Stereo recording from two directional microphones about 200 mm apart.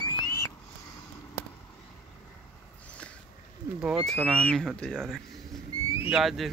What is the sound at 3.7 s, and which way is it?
Speech, 5° right (ahead or behind).